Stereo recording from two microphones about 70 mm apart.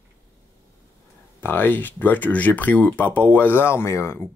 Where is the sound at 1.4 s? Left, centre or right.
Left.